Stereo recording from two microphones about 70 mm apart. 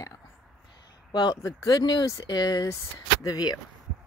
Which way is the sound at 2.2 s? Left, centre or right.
Left.